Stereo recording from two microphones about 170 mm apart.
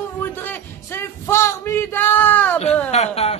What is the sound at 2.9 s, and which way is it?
Speech, 40° left (ahead or behind).